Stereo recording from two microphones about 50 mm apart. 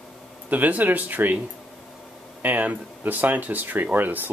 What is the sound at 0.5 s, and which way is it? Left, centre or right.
Speech, right.